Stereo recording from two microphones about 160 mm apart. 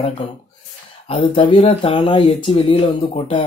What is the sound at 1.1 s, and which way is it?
Speech, 35° left (ahead or behind).